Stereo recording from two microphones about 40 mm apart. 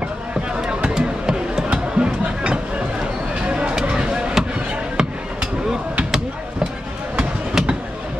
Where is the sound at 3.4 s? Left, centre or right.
Right.